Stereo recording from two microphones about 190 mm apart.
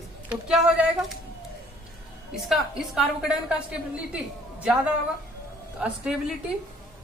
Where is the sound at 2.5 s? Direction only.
Centre (ahead or behind).